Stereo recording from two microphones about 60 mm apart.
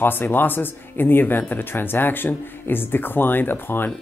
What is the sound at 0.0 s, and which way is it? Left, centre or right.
Speech, left.